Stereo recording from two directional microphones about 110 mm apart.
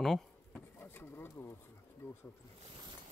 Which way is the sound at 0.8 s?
20° left (ahead or behind).